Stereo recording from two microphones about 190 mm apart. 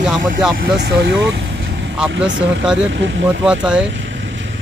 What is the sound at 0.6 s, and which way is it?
Speech, 60° right (ahead or behind).